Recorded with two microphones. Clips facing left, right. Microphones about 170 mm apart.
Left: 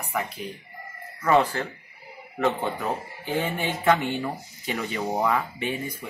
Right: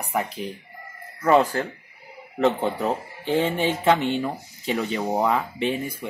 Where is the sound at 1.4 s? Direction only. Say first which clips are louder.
Right 2 dB; 45° right (ahead or behind).